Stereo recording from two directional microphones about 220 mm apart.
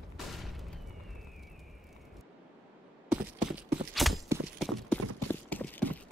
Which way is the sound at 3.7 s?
Centre (ahead or behind).